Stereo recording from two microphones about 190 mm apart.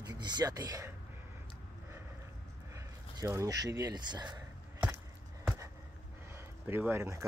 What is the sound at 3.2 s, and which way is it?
Speech, 15° right (ahead or behind).